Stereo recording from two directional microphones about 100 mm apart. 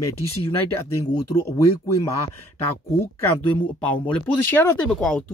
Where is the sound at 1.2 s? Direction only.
35° left (ahead or behind).